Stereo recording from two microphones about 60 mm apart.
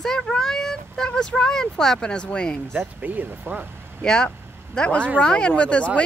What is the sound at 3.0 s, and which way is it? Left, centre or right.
Speech, right.